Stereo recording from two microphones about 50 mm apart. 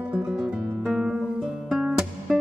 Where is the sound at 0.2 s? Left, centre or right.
Centre.